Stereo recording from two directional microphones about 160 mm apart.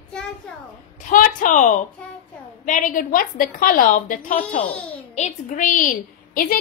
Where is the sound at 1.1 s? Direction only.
55° left (ahead or behind).